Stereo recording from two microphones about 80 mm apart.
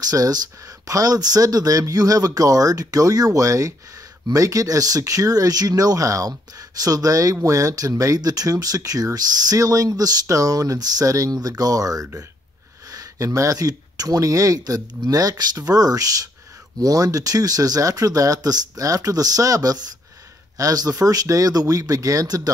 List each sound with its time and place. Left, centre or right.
0.0 s speech: right